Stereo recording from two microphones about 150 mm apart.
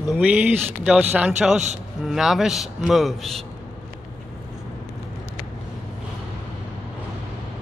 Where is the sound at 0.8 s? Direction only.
5° right (ahead or behind).